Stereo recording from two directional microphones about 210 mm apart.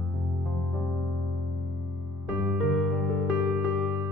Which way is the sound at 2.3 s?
Centre (ahead or behind).